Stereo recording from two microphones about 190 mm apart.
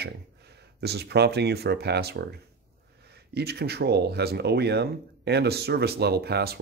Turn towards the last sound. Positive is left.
turn(degrees=-55)  # may be behind; listen again after turning